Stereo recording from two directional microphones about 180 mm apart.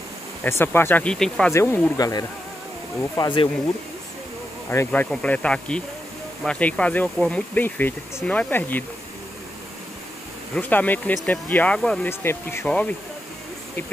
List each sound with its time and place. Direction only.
0.4 s speech: 15° left (ahead or behind)
1.5 s speech: 15° left (ahead or behind)
4.6 s speech: 10° left (ahead or behind)
10.5 s speech: 10° left (ahead or behind)